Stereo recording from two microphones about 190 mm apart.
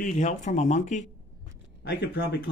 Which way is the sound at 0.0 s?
40° left (ahead or behind).